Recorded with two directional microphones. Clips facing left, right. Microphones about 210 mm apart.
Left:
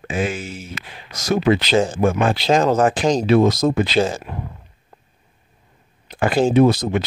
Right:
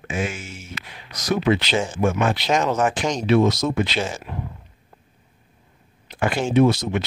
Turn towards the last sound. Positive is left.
turn(degrees=35)  # may be behind; listen again after turning